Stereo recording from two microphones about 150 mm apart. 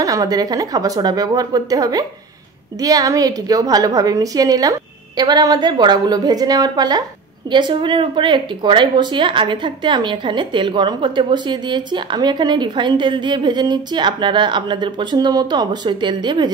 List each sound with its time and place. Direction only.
0.0 s a woman's voice: 25° right (ahead or behind)